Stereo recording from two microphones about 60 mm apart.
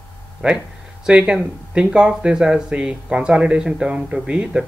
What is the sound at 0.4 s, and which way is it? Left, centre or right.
Speech, centre.